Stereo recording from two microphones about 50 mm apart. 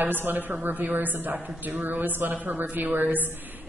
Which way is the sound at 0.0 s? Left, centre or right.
Right.